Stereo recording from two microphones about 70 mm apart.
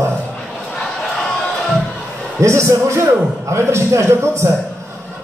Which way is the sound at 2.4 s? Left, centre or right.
Right.